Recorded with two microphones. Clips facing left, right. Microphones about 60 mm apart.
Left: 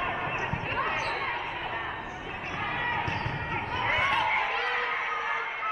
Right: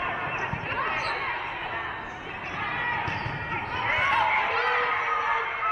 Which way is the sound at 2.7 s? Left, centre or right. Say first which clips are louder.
Right 1 dB; centre.